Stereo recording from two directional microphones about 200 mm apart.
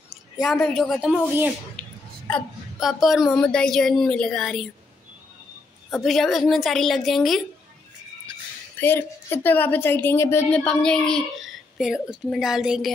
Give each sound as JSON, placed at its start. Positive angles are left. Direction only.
{"t": 0.4, "sound": "a woman's voice", "side_deg": 0}
{"t": 5.9, "sound": "a woman's voice", "side_deg": 0}
{"t": 8.7, "sound": "a woman's voice", "side_deg": 10}